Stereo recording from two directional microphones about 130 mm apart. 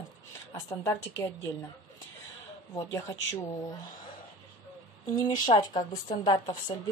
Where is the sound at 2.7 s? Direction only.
25° left (ahead or behind).